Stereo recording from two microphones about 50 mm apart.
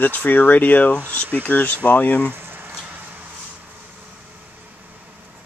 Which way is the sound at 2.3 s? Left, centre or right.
Right.